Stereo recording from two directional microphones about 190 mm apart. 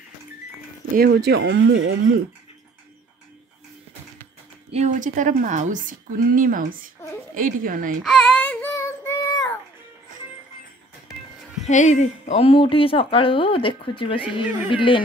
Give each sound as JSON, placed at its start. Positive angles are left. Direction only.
{"t": 0.9, "sound": "speech", "side_deg": -55}
{"t": 4.6, "sound": "speech", "side_deg": -35}
{"t": 8.0, "sound": "baby cry", "side_deg": 5}
{"t": 11.6, "sound": "speech", "side_deg": 40}